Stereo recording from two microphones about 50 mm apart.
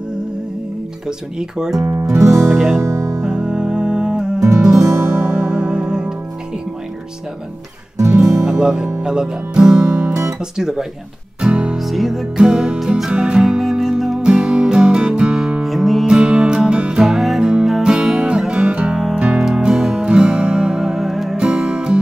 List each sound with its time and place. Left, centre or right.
1.6 s speech: centre
2.1 s music: right
2.5 s speech: centre
2.8 s speech: right
3.4 s music: centre
8.0 s music: right
8.5 s speech: centre
11.4 s music: centre
11.8 s music: centre
14.2 s music: centre
15.6 s music: centre
16.1 s music: centre
21.4 s music: centre